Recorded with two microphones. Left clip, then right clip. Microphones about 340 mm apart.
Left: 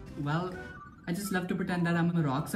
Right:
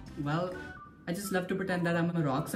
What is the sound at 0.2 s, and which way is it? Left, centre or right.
Speech, centre.